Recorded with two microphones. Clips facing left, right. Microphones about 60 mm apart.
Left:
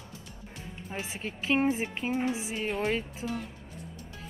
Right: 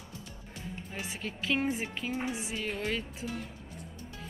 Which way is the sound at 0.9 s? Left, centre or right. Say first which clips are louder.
Left 4 dB; left.